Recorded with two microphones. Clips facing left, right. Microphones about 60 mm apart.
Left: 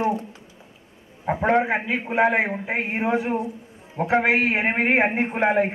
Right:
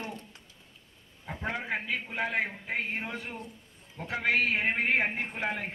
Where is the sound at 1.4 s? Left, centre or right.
Left.